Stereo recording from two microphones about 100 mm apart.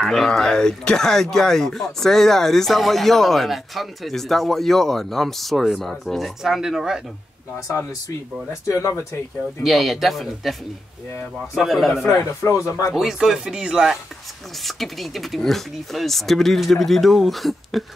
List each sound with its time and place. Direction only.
0.0 s speech: centre (ahead or behind)
8.6 s speech: 30° left (ahead or behind)
9.6 s speech: centre (ahead or behind)
11.5 s speech: centre (ahead or behind)
12.2 s speech: 35° left (ahead or behind)
12.9 s speech: 5° right (ahead or behind)